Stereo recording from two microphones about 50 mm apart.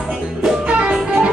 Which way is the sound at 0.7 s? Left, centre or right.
Right.